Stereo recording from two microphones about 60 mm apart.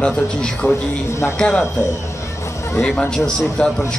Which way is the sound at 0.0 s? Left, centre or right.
Centre.